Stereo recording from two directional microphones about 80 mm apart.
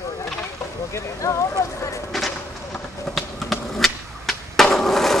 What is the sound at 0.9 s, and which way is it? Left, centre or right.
Speech, left.